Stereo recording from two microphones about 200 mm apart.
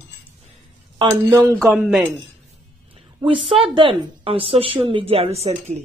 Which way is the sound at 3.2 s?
25° right (ahead or behind).